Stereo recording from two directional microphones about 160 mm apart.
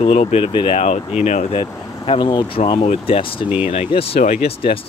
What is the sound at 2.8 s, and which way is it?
Speech, 40° left (ahead or behind).